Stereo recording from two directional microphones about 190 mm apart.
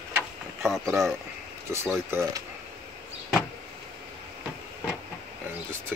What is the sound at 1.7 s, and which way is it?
Speech, 15° right (ahead or behind).